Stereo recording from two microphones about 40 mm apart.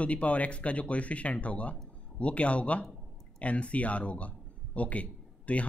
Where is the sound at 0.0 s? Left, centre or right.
Left.